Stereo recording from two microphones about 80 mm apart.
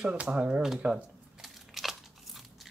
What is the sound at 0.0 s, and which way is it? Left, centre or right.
Speech, centre.